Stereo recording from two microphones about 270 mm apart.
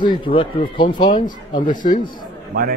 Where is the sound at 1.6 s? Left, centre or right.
Left.